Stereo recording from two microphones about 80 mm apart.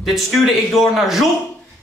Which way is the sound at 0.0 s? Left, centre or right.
Centre.